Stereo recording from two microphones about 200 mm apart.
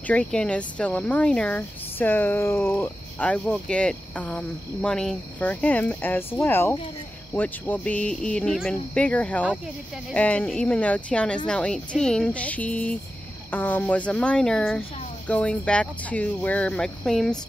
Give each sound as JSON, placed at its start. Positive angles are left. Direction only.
{"t": 0.0, "sound": "speech", "side_deg": 5}